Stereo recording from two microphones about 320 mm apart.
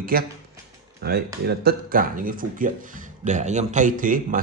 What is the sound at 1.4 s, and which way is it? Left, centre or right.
Speech, right.